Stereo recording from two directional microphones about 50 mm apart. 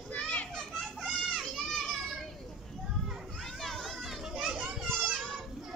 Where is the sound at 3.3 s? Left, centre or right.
Centre.